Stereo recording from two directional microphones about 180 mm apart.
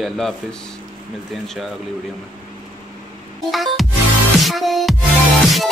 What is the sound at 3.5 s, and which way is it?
Music, centre (ahead or behind).